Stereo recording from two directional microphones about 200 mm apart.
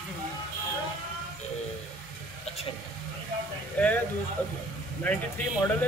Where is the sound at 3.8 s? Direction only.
5° left (ahead or behind).